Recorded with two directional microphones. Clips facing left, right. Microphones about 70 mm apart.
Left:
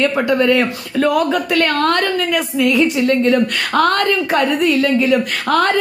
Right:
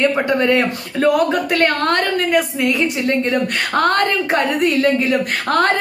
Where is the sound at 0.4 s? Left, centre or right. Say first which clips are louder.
Left 1 dB; right.